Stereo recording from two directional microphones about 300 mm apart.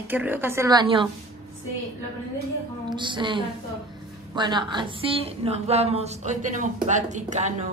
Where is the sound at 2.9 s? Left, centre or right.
Centre.